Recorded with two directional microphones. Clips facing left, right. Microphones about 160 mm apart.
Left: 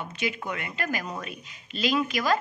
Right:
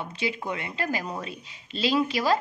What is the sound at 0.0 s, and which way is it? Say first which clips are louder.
A woman's voice: right 1 dB; 30° right (ahead or behind).